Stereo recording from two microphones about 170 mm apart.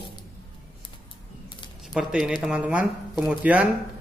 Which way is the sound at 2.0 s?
5° right (ahead or behind).